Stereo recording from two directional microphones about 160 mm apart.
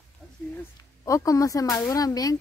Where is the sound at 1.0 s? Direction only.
20° left (ahead or behind).